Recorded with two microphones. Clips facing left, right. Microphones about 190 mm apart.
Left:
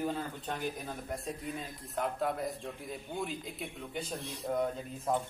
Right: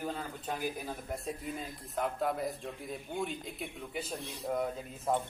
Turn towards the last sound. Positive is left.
turn(degrees=0)  # may be behind; listen again after turning